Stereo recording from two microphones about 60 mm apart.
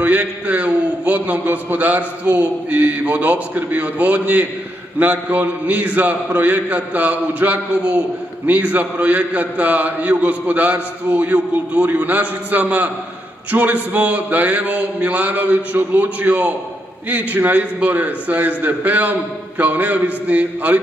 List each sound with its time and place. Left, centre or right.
0.0 s a man's voice: right